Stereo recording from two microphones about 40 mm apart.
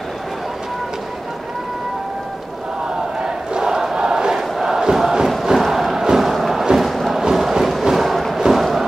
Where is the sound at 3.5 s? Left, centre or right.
Centre.